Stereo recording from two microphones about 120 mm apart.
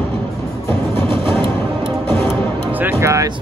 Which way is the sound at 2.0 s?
20° left (ahead or behind).